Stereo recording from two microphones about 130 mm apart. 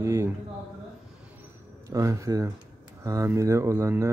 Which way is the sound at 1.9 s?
25° right (ahead or behind).